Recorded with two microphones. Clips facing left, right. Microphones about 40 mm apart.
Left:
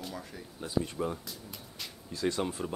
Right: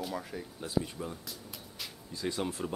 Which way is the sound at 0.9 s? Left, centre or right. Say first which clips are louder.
Left 6 dB; centre.